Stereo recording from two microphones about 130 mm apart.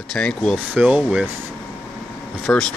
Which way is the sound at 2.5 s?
10° left (ahead or behind).